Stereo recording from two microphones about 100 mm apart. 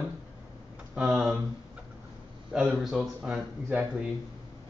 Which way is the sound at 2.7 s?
5° right (ahead or behind).